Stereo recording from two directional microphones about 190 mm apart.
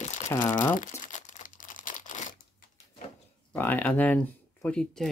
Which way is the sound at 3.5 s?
10° left (ahead or behind).